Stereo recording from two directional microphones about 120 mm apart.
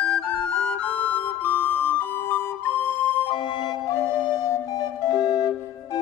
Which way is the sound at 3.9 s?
35° left (ahead or behind).